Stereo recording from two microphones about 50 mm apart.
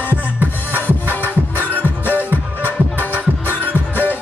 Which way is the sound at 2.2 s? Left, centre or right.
Right.